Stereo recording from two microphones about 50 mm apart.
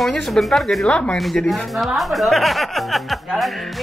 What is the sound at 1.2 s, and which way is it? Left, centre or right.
Speech, centre.